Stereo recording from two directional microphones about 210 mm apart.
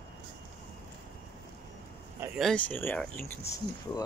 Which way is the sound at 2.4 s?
5° left (ahead or behind).